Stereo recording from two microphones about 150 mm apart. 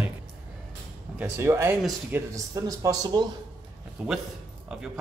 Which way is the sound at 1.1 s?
15° right (ahead or behind).